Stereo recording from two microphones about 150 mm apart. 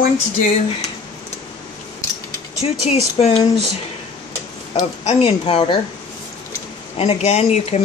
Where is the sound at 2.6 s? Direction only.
45° left (ahead or behind).